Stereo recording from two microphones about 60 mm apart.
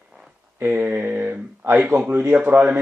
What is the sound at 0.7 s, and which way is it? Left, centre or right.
Speech, right.